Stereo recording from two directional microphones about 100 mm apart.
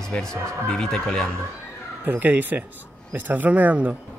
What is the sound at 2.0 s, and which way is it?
Speech, 15° right (ahead or behind).